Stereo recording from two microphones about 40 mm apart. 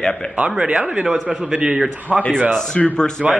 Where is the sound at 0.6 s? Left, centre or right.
Right.